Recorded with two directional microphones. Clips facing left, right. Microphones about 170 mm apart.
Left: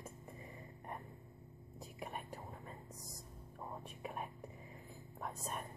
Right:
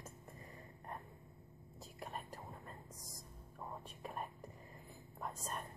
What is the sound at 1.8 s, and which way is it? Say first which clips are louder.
Whispering: left 1 dB; 5° left (ahead or behind).